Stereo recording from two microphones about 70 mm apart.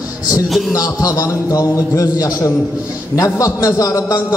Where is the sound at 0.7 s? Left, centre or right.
Left.